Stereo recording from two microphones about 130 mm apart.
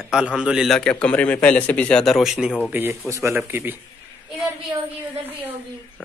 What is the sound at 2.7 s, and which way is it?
A man's voice, 15° right (ahead or behind).